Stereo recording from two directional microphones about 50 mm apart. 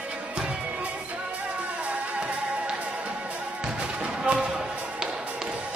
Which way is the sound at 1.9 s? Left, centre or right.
Right.